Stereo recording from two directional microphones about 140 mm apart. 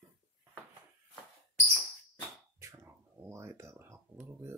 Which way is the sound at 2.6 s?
20° right (ahead or behind).